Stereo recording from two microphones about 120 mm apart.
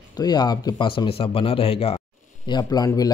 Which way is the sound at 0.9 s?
50° left (ahead or behind).